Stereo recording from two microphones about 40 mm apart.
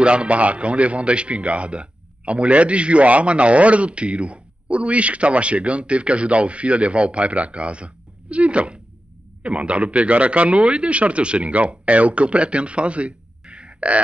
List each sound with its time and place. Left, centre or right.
0.0 s a man's voice: right